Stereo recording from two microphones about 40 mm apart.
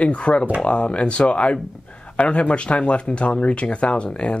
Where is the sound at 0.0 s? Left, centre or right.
Left.